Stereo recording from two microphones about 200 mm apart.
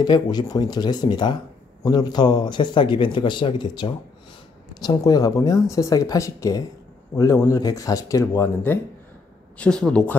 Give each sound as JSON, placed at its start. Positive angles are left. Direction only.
{"t": 0.0, "sound": "a man's voice", "side_deg": 20}